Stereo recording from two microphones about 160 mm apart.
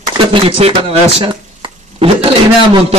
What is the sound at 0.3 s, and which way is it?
Speech, 35° right (ahead or behind).